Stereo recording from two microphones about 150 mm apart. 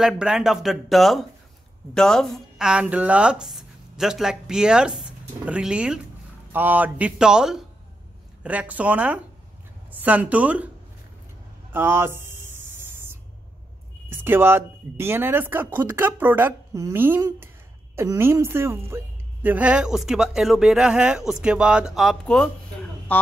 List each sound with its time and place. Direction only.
0.0 s a woman's voice: 5° right (ahead or behind)
11.7 s a sound: 15° right (ahead or behind)
14.1 s a woman's voice: 15° right (ahead or behind); by 22.5 s 5° left (ahead or behind)